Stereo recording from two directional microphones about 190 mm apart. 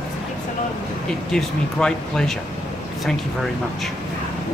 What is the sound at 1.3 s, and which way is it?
Speech, 5° left (ahead or behind).